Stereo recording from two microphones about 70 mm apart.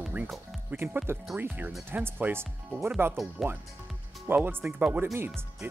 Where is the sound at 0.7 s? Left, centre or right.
Right.